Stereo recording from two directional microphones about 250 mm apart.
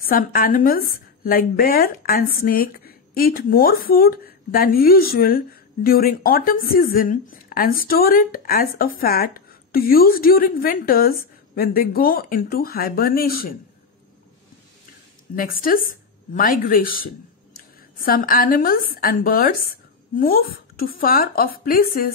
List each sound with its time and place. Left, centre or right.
0.0 s a woman's voice: left
15.3 s a woman's voice: left